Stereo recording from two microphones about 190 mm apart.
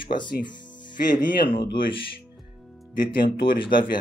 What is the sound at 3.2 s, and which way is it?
Speech, 55° left (ahead or behind).